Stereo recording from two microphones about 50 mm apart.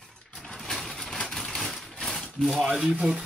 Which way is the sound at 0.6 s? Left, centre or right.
Centre.